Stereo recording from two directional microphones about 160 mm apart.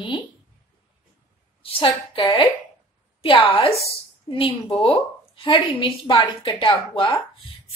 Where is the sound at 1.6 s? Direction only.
35° left (ahead or behind).